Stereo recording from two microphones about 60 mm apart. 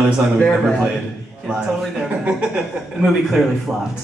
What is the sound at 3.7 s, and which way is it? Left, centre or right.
Speech, centre.